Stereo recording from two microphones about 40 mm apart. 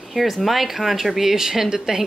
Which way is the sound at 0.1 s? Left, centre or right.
Centre.